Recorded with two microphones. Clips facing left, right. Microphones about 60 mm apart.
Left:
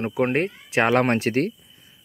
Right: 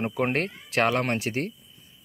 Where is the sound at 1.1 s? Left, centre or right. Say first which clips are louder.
Left 6 dB; left.